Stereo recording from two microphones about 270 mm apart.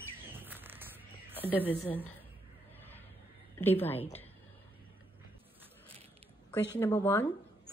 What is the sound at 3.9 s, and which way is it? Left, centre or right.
Speech, left.